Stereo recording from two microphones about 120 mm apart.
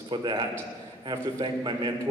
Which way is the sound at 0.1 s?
40° right (ahead or behind).